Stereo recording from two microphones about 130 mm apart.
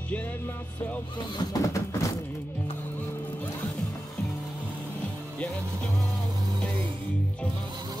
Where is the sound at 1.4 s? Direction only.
25° left (ahead or behind).